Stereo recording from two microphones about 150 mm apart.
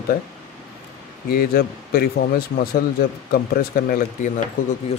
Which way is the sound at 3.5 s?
80° left.